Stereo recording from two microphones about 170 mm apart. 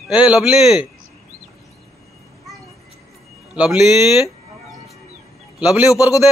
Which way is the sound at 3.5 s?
5° right (ahead or behind).